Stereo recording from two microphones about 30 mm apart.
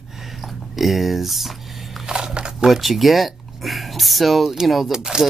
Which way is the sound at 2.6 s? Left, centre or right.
Centre.